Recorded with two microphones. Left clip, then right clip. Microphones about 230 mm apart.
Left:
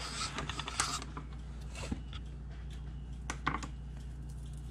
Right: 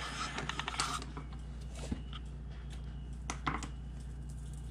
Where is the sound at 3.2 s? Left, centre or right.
Centre.